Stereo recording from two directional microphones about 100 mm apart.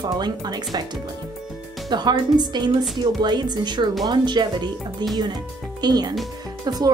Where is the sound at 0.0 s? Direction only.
45° right (ahead or behind).